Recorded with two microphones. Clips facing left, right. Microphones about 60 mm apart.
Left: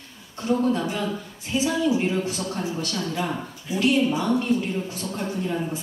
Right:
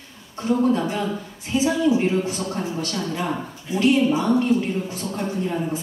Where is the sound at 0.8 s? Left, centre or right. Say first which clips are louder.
Right 2 dB; centre.